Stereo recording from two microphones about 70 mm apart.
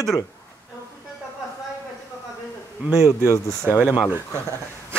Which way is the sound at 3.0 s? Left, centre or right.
Left.